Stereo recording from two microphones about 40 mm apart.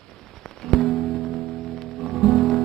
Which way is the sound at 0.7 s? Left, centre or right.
Centre.